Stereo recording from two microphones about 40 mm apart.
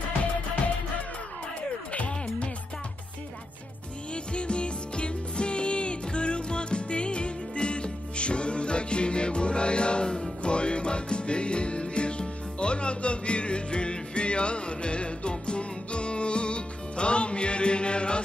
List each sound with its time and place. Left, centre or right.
1.9 s music: left
4.1 s music: left